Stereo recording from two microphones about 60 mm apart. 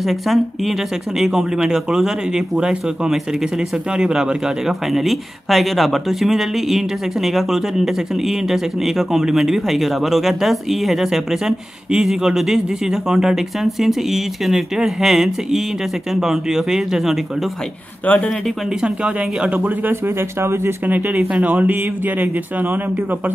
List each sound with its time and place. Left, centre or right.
0.0 s speech: centre
18.0 s speech: left
18.8 s speech: centre
19.9 s speech: right
20.8 s speech: right